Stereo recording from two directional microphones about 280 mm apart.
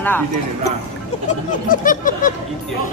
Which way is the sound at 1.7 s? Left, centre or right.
Left.